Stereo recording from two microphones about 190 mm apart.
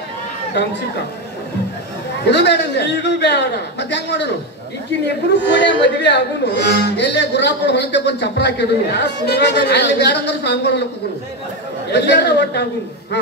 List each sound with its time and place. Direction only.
2.2 s speech: 65° left (ahead or behind)
5.5 s speech: 65° left (ahead or behind)
11.9 s speech: 60° left (ahead or behind)